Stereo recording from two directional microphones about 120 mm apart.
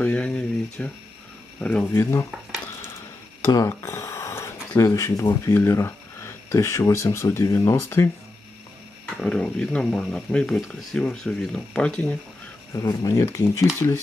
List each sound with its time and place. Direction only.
0.0 s speech: 10° left (ahead or behind)
3.5 s speech: 25° left (ahead or behind)
9.1 s speech: 5° left (ahead or behind)
12.7 s speech: 25° left (ahead or behind)